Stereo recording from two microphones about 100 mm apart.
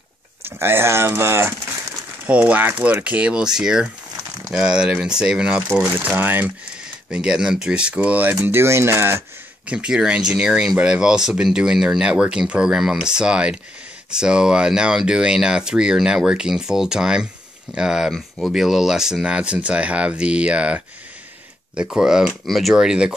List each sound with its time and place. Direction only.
0.4 s speech: 20° right (ahead or behind)
2.2 s speech: 15° right (ahead or behind)
5.7 s speech: 25° right (ahead or behind)
7.1 s speech: 10° right (ahead or behind)
9.7 s speech: 10° right (ahead or behind)